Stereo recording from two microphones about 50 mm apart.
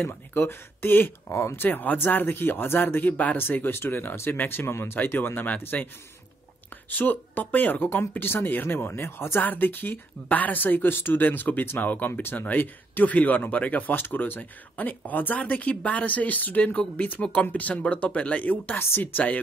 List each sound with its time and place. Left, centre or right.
0.0 s speech: left
1.6 s speech: left
5.0 s speech: left
6.9 s speech: left
9.4 s speech: left
12.1 s speech: left